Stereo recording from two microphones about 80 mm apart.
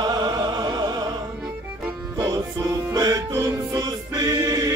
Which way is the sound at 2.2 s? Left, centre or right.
Right.